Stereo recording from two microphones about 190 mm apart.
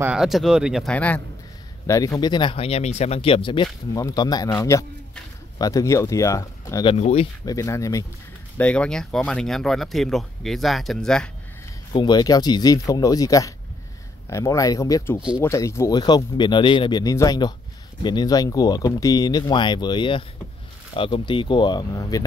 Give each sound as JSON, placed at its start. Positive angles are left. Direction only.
{"t": 0.0, "sound": "speech", "side_deg": -5}
{"t": 0.9, "sound": "speech", "side_deg": 5}
{"t": 7.4, "sound": "speech", "side_deg": 15}
{"t": 11.9, "sound": "speech", "side_deg": 25}
{"t": 15.1, "sound": "speech", "side_deg": -5}
{"t": 15.4, "sound": "speech", "side_deg": 15}